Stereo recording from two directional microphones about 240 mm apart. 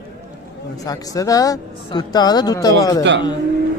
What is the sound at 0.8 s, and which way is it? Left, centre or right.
Speech, centre.